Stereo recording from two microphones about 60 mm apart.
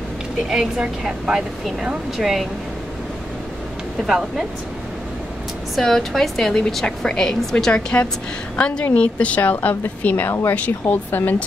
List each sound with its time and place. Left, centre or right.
0.5 s speech: centre
4.0 s speech: centre
5.8 s a woman's voice: centre; by 11.4 s left